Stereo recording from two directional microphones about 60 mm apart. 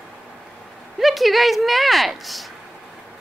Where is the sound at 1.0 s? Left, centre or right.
Centre.